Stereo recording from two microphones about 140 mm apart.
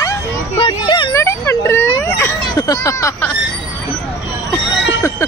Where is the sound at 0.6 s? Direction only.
35° left (ahead or behind).